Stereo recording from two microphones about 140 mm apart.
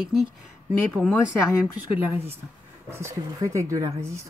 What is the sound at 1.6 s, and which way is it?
A woman's voice, 10° right (ahead or behind).